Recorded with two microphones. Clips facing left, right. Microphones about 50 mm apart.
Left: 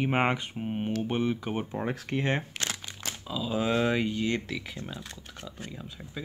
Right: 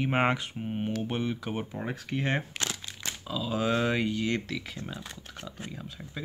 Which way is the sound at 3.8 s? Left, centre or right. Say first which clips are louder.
Left 1 dB; centre.